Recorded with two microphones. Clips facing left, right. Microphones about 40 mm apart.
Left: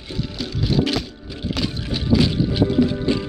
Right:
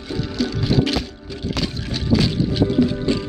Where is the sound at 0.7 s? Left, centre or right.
Centre.